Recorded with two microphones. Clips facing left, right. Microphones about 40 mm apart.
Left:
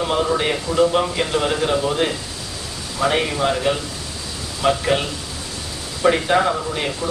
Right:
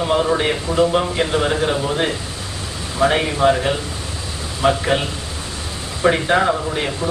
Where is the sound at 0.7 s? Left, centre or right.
Right.